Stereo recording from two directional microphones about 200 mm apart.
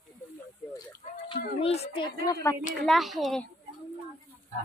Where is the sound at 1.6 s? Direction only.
30° left (ahead or behind).